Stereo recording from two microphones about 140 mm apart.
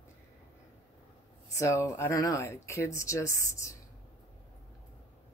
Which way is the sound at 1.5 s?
20° left (ahead or behind).